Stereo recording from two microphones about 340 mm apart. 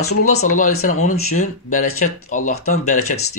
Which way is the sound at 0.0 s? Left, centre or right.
Left.